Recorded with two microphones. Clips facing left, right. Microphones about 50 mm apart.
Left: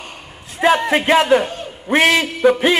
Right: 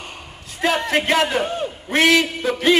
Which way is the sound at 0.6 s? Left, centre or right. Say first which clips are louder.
Left 6 dB; left.